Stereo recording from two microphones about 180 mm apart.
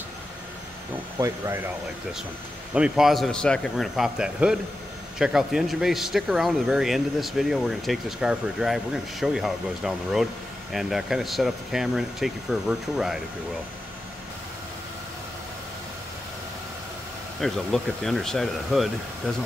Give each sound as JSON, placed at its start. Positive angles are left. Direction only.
{"t": 1.1, "sound": "speech", "side_deg": -15}
{"t": 2.7, "sound": "speech", "side_deg": -5}
{"t": 17.4, "sound": "speech", "side_deg": 0}